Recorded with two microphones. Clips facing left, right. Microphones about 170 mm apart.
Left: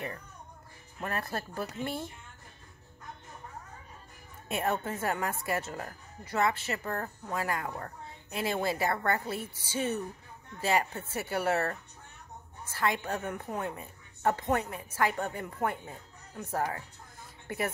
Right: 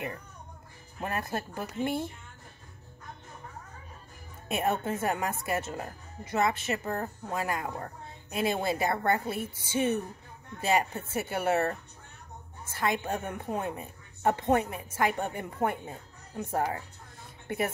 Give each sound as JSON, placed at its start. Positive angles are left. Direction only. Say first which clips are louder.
{"t": 1.0, "sound": "speech", "louder": "right 2 dB", "side_deg": -15}
{"t": 4.5, "sound": "a woman's voice", "louder": "right 2 dB", "side_deg": -20}
{"t": 12.7, "sound": "a woman's voice", "louder": "right 1 dB", "side_deg": -25}